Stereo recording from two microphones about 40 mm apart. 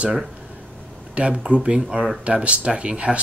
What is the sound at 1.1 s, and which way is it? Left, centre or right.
Speech, right.